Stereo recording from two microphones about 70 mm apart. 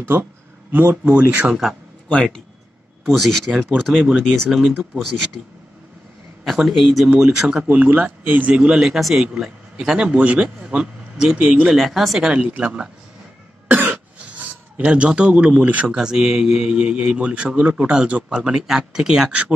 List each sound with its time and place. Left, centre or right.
0.1 s speech: right
1.5 s speech: centre
3.1 s speech: centre
4.5 s speech: centre
6.4 s speech: centre
7.2 s speech: centre
11.6 s speech: centre
13.7 s cough: right
16.0 s speech: centre